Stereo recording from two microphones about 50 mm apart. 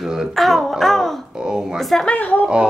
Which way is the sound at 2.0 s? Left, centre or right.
Left.